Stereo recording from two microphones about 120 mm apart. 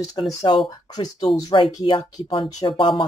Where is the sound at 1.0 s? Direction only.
35° left (ahead or behind).